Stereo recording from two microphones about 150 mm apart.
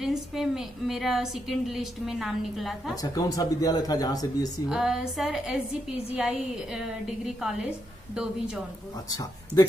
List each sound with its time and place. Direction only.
0.0 s a woman's voice: centre (ahead or behind)
3.0 s speech: 25° left (ahead or behind)
4.6 s a woman's voice: 5° right (ahead or behind)